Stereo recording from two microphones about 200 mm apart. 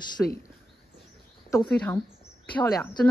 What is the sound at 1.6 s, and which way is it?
Speech, 5° left (ahead or behind).